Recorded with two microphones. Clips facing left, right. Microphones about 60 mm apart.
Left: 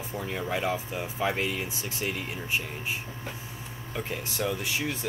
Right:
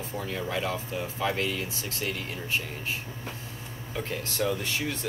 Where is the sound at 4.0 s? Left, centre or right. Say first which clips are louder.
Right 1 dB; centre.